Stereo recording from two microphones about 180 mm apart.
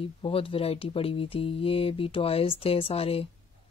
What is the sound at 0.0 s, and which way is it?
Speech, 30° left (ahead or behind).